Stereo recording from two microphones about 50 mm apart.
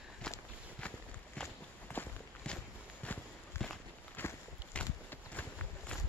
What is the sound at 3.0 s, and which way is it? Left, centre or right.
Walk, left.